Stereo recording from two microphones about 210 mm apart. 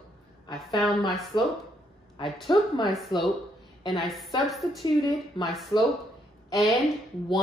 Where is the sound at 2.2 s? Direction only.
Centre (ahead or behind).